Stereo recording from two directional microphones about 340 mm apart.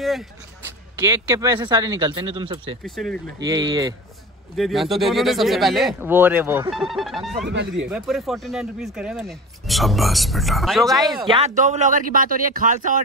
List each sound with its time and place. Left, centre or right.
0.9 s speech: centre
2.8 s speech: centre
3.4 s speech: centre
4.6 s speech: centre
11.1 s speech: centre